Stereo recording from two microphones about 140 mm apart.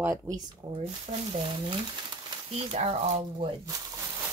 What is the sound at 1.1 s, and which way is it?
Speech, 55° right (ahead or behind).